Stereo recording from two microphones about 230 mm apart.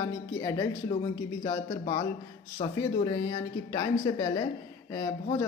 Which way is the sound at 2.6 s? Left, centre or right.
Left.